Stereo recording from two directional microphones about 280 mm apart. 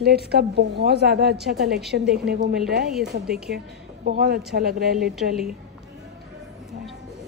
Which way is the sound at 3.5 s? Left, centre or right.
Right.